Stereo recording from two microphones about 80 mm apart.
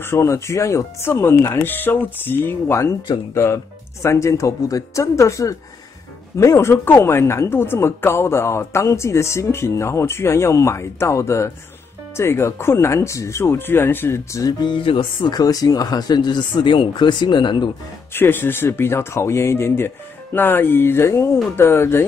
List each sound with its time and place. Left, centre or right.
0.0 s speech: left
14.6 s speech: left
15.3 s speech: left
18.1 s speech: left